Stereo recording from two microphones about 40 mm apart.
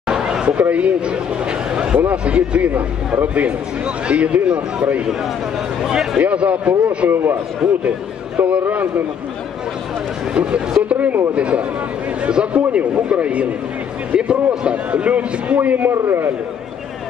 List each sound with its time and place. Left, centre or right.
0.1 s a sound: right
0.7 s a man's voice: right
2.0 s a man's voice: right
5.8 s a man's voice: centre
6.1 s a man's voice: right
7.6 s a man's voice: centre
8.6 s a man's voice: right
10.3 s a man's voice: right
15.9 s a man's voice: right